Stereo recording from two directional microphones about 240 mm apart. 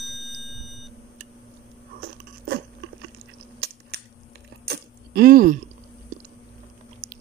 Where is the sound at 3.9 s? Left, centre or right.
Right.